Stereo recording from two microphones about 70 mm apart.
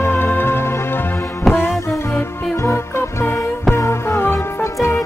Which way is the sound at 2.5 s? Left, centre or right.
Left.